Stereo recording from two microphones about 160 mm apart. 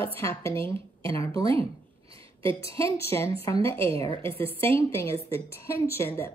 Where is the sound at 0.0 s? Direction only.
15° left (ahead or behind).